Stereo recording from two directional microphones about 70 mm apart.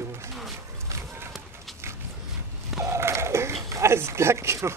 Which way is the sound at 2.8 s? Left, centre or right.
Right.